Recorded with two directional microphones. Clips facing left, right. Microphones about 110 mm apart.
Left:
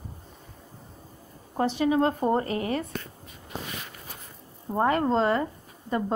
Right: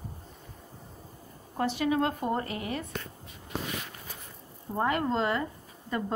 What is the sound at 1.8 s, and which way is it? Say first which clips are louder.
A woman's voice: left 5 dB; 30° left (ahead or behind).